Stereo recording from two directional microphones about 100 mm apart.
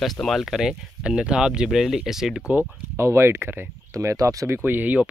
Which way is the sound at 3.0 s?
25° right (ahead or behind).